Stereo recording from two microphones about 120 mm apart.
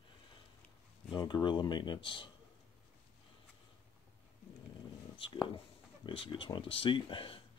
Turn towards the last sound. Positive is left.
turn(degrees=50)  # may be behind; listen again after turning